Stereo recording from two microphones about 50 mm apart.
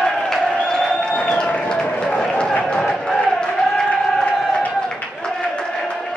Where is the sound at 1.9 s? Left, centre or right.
Centre.